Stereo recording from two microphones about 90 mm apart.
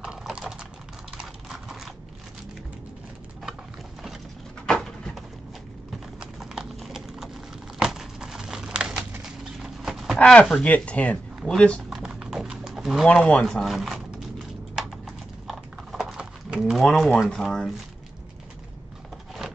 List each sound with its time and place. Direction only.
0.0 s typing: 10° right (ahead or behind)
4.6 s bird: 5° left (ahead or behind)
6.1 s clip-clop: 5° right (ahead or behind)
7.8 s a sound: 5° right (ahead or behind)
9.2 s clip-clop: 5° right (ahead or behind)
10.1 s speech: 10° left (ahead or behind)
11.9 s bird: 5° right (ahead or behind)
13.1 s speech: 5° left (ahead or behind)
14.8 s typing: 5° right (ahead or behind)
15.4 s a sound: 5° right (ahead or behind)
17.3 s speech: 5° left (ahead or behind)